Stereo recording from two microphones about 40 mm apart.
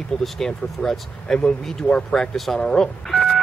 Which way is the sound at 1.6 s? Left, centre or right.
Centre.